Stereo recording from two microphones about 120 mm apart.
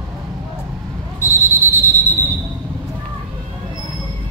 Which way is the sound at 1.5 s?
15° left (ahead or behind).